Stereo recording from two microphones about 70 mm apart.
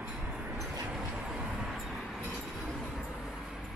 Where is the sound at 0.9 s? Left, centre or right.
Centre.